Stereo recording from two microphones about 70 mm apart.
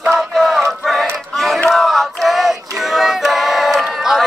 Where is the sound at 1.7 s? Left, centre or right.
Centre.